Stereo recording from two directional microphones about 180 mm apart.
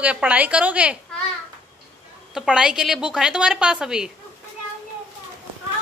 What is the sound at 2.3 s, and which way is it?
A woman's voice, 5° right (ahead or behind).